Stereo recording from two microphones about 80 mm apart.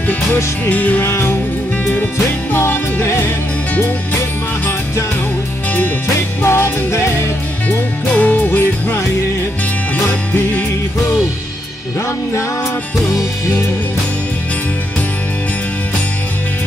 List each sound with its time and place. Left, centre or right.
0.7 s music: left
1.0 s music: left
6.0 s music: left
7.6 s music: centre
10.0 s music: left